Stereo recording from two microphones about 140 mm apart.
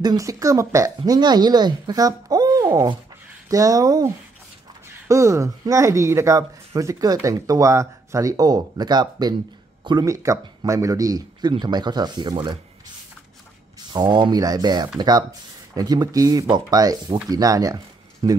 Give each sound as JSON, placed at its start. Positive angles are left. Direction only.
{"t": 0.0, "sound": "speech", "side_deg": -25}
{"t": 13.9, "sound": "speech", "side_deg": -35}